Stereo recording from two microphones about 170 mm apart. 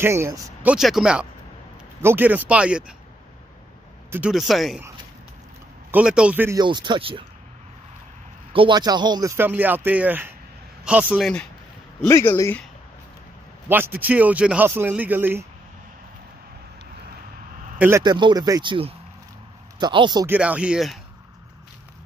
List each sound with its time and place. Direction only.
0.0 s speech: 15° right (ahead or behind)
4.1 s speech: 5° right (ahead or behind)
5.9 s speech: 5° right (ahead or behind)
6.6 s speech: 25° right (ahead or behind)
8.5 s speech: 25° right (ahead or behind)
9.4 s speech: 10° right (ahead or behind)
11.1 s speech: centre (ahead or behind)
12.1 s speech: 15° left (ahead or behind)
13.7 s speech: 10° right (ahead or behind)
17.7 s speech: 15° right (ahead or behind)
18.0 s speech: 25° right (ahead or behind)
20.2 s speech: 10° right (ahead or behind)